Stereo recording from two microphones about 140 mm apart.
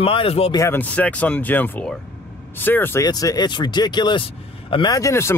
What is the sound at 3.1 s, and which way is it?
Speech, 25° left (ahead or behind).